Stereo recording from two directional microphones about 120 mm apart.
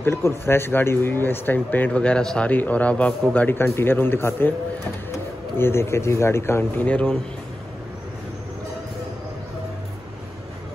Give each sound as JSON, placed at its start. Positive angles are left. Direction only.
{"t": 0.0, "sound": "speech", "side_deg": 20}
{"t": 6.9, "sound": "speech", "side_deg": 10}